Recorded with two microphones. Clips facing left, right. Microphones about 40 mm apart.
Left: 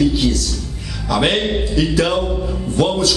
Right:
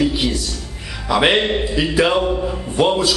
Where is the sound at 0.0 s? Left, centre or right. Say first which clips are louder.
Left 2 dB; centre.